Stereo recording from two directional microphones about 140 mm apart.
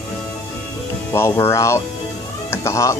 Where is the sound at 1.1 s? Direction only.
20° left (ahead or behind).